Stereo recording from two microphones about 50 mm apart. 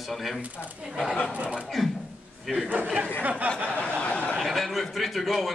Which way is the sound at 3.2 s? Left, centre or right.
Right.